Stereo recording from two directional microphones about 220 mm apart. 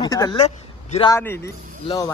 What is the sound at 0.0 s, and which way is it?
A man's voice, 15° left (ahead or behind).